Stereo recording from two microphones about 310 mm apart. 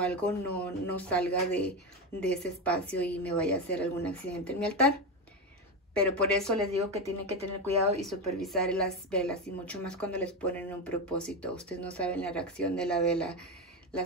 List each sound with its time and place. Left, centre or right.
0.0 s a woman's voice: centre
5.9 s a woman's voice: centre
7.2 s speech: centre
8.1 s a woman's voice: centre